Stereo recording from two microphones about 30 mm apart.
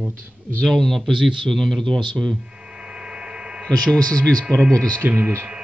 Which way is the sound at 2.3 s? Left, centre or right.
Right.